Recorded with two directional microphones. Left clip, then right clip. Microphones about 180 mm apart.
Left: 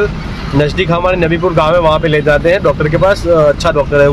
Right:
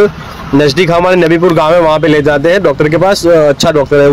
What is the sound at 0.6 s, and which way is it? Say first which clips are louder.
A man's voice: right 5 dB; 30° right (ahead or behind).